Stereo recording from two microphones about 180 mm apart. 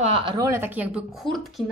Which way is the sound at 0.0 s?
30° right (ahead or behind).